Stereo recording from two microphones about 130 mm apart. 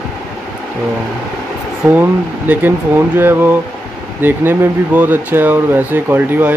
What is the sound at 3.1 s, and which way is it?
Speech, 15° right (ahead or behind).